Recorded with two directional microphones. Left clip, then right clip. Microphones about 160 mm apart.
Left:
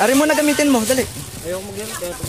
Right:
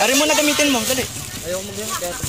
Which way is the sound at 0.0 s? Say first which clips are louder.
Left 1 dB; 45° left (ahead or behind).